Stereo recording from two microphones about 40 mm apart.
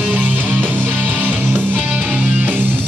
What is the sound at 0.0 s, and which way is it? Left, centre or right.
Music, right.